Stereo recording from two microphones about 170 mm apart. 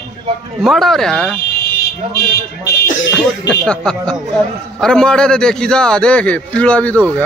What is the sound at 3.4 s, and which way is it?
A man's voice, 5° left (ahead or behind).